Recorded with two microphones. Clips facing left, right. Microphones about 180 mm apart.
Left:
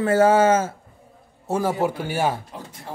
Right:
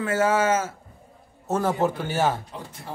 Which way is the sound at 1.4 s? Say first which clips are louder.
Left 1 dB; 10° left (ahead or behind).